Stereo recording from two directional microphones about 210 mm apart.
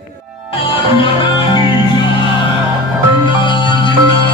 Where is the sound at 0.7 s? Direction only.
25° left (ahead or behind).